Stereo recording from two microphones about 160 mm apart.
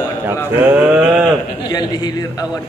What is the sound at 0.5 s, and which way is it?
Sheep, 10° right (ahead or behind).